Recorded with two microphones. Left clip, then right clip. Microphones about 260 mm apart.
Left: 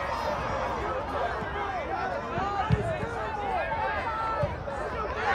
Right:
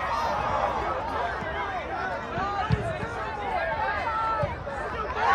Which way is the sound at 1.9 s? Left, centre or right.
Right.